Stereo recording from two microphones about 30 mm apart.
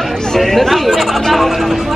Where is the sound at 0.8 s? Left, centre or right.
Centre.